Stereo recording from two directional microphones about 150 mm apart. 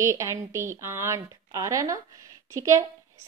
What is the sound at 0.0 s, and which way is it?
A woman's voice, 20° right (ahead or behind).